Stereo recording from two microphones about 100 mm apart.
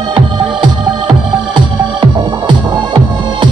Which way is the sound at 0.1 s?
55° right (ahead or behind).